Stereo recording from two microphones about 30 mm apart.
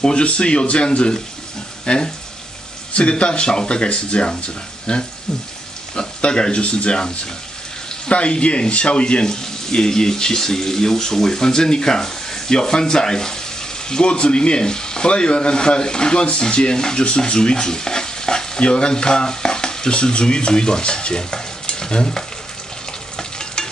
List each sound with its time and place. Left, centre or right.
0.0 s speech: left
6.2 s speech: left
8.1 s speech: left
9.2 s speech: left
17.0 s stir: left
18.6 s stir: left
19.9 s stir: left